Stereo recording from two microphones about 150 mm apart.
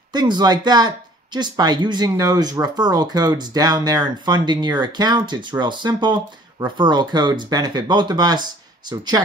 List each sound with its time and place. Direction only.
0.1 s speech: 30° right (ahead or behind)